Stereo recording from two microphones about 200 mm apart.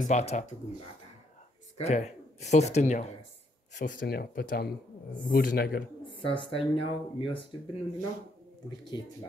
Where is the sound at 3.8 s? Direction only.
45° left (ahead or behind).